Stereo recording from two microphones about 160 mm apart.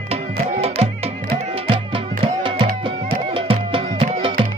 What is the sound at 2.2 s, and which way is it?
Tabla, 35° right (ahead or behind).